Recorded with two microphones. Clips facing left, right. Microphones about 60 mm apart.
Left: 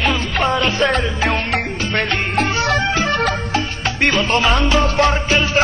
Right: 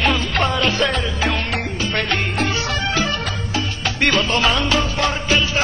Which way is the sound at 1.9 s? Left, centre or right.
Left.